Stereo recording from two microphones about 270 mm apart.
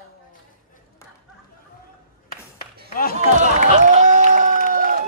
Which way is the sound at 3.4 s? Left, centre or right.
Right.